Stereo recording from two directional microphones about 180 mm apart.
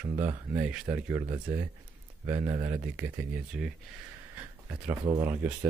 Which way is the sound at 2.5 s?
20° right (ahead or behind).